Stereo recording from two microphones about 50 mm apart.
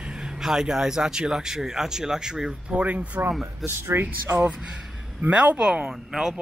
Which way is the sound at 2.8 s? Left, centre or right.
Right.